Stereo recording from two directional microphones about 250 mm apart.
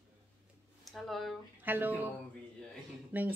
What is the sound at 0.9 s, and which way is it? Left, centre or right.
Speech, centre.